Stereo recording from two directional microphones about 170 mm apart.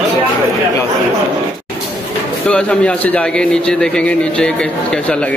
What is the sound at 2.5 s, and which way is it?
A man's voice, 5° left (ahead or behind).